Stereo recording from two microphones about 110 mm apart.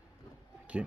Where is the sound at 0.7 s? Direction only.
10° right (ahead or behind).